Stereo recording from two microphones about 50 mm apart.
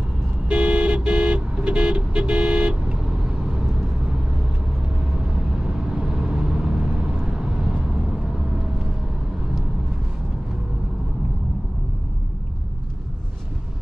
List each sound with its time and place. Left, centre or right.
0.5 s vehicle: right